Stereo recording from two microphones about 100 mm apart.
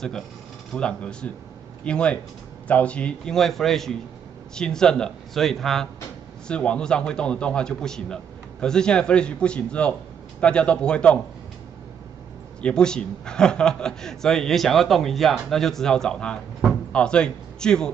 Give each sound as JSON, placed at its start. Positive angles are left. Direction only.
{"t": 0.7, "sound": "a man's voice", "side_deg": 10}
{"t": 12.6, "sound": "a man's voice", "side_deg": 10}